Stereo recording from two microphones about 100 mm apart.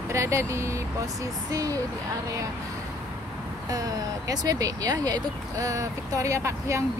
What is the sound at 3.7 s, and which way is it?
Speech, 35° right (ahead or behind).